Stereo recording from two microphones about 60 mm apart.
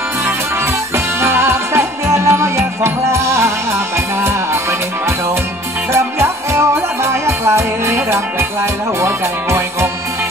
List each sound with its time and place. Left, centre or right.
0.9 s music: right